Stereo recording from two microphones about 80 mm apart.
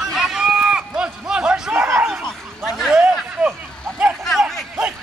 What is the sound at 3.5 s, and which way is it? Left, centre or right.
Vehicle, centre.